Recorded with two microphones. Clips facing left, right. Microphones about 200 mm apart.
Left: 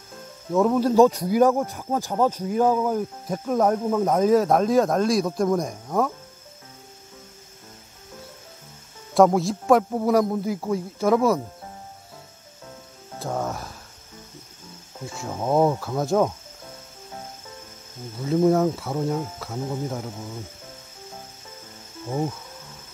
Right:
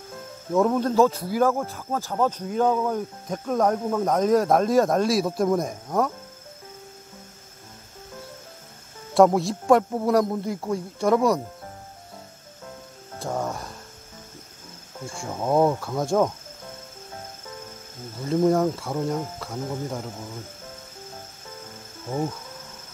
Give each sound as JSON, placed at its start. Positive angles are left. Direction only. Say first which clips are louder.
{"t": 0.5, "sound": "speech", "louder": "left 1 dB", "side_deg": 0}
{"t": 9.1, "sound": "speech", "louder": "even", "side_deg": 0}
{"t": 13.2, "sound": "speech", "louder": "even", "side_deg": 0}
{"t": 15.0, "sound": "speech", "louder": "even", "side_deg": 0}
{"t": 18.2, "sound": "speech", "louder": "left 1 dB", "side_deg": 0}